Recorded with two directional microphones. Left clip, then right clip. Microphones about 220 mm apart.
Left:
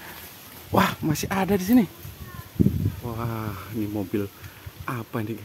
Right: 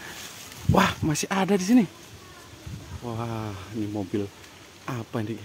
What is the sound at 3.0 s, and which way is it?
Speech, 10° left (ahead or behind).